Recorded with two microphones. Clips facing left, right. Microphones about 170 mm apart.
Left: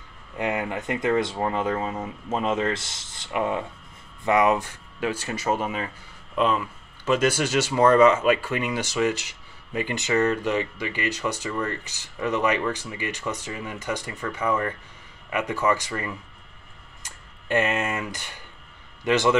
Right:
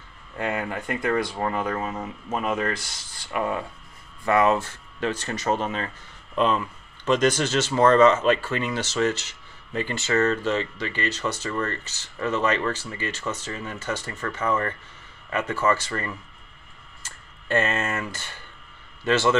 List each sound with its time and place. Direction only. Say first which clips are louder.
0.4 s speech: left 1 dB; 20° left (ahead or behind)